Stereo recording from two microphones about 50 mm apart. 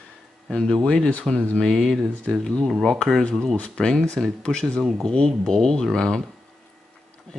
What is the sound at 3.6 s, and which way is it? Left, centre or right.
Speech, centre.